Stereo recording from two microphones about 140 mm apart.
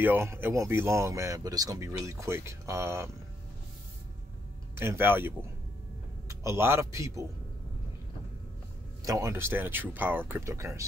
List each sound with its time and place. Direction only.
0.0 s speech: 15° right (ahead or behind)
4.7 s a man's voice: 15° right (ahead or behind)
9.0 s speech: 20° right (ahead or behind)